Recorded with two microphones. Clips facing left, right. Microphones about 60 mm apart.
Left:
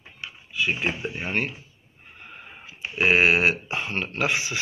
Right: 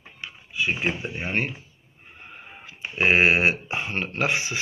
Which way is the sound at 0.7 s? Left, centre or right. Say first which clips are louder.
Right 1 dB; centre.